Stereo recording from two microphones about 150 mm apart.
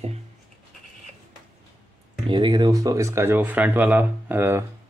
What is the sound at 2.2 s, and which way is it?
Speech, 35° right (ahead or behind).